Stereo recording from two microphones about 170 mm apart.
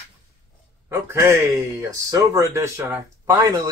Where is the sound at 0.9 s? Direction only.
15° right (ahead or behind).